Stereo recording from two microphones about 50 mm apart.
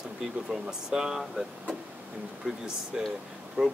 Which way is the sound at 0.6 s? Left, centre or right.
Centre.